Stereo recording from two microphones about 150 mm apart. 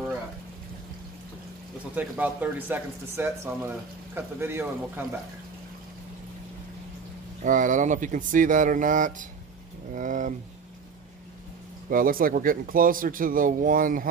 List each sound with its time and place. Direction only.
2.0 s speech: 10° right (ahead or behind)
7.4 s speech: 60° right (ahead or behind)
11.9 s speech: 70° right (ahead or behind)